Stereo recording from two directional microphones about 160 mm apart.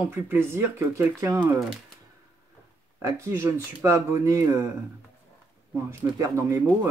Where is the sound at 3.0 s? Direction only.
15° right (ahead or behind).